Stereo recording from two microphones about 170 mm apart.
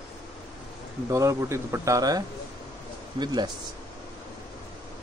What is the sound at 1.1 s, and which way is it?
Speech, 15° right (ahead or behind).